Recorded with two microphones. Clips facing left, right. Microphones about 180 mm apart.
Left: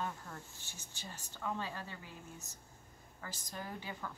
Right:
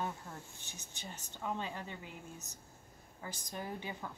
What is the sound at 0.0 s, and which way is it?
A woman's voice, 20° right (ahead or behind).